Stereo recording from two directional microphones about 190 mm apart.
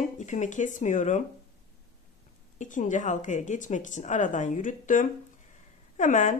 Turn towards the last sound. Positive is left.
turn(degrees=40)  # may be behind; listen again after turning